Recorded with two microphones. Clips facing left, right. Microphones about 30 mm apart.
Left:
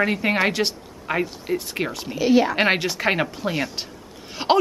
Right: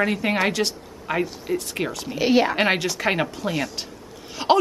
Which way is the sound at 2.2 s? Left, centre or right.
Centre.